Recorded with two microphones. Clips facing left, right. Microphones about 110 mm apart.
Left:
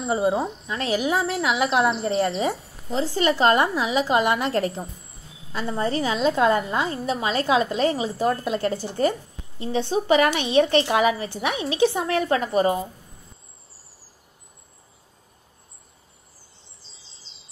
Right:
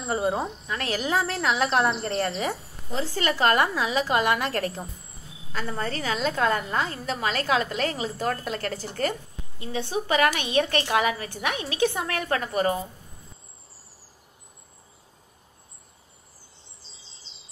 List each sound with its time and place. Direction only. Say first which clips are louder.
0.0 s speech: left 4 dB; 5° left (ahead or behind)
0.7 s a woman's voice: left 3 dB; 25° left (ahead or behind)
0.9 s speech: left 3 dB; centre (ahead or behind)
2.4 s a woman's voice: left 4 dB; 25° left (ahead or behind)
16.8 s bird: even; centre (ahead or behind)